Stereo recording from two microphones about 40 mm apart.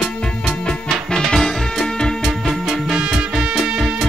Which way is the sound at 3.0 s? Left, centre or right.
Right.